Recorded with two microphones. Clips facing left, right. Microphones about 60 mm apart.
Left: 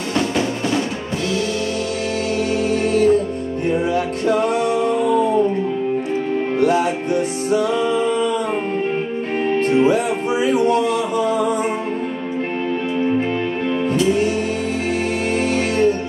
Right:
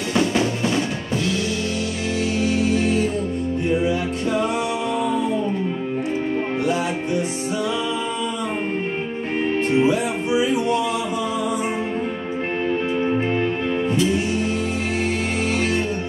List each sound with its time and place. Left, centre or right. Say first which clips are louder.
2.7 s music: left 5 dB; left
6.6 s music: left 8 dB; left
9.8 s music: left 3 dB; left